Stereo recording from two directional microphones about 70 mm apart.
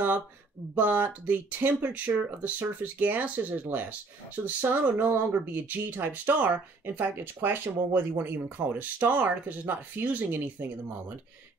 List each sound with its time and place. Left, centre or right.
0.7 s speech: right